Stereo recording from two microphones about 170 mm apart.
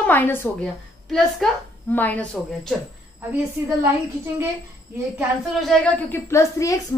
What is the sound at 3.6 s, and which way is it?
Speech, 15° right (ahead or behind).